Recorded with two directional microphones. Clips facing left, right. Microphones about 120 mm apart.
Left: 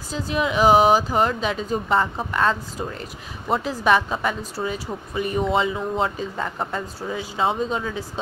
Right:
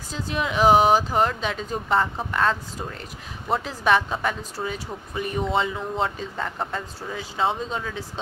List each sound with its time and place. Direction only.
0.1 s speech: 5° left (ahead or behind)